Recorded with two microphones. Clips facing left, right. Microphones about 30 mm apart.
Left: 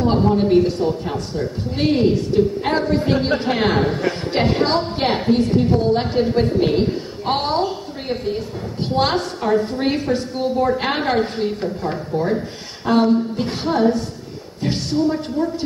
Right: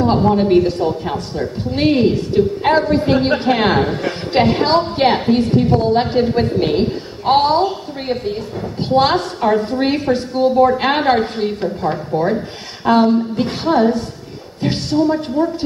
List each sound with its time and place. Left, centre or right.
0.0 s a woman's voice: centre